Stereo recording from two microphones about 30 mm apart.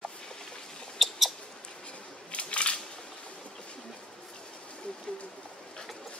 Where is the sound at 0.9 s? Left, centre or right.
Centre.